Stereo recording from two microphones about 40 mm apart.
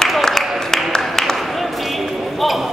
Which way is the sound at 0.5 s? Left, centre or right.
Centre.